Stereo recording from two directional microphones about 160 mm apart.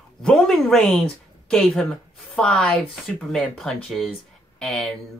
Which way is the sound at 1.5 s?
Centre (ahead or behind).